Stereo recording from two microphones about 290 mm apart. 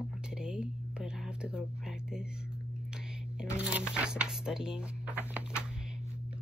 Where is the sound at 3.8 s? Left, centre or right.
Centre.